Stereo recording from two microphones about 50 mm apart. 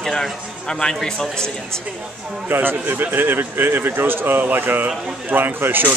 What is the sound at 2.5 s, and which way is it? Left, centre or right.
Speech, right.